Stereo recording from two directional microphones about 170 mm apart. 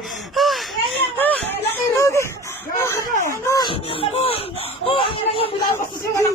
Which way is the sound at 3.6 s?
35° left (ahead or behind).